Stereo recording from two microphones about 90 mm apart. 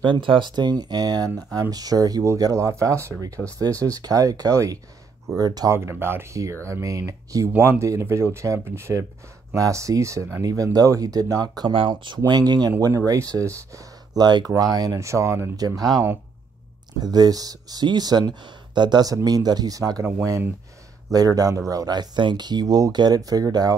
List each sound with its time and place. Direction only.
0.0 s speech: 70° right (ahead or behind)
0.5 s speech: 50° right (ahead or behind)
5.7 s speech: 30° right (ahead or behind); by 11.7 s 50° right (ahead or behind)
11.7 s speech: 75° right (ahead or behind)
12.3 s speech: 50° right (ahead or behind); by 15.5 s 30° right (ahead or behind)
15.5 s speech: 45° right (ahead or behind)
17.0 s speech: 50° right (ahead or behind)
21.1 s speech: 45° right (ahead or behind)